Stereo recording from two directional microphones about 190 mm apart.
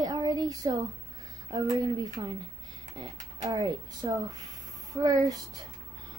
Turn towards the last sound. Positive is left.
turn(degrees=-20)  # may be behind; listen again after turning